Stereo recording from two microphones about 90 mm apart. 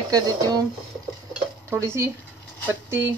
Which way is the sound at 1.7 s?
30° right (ahead or behind).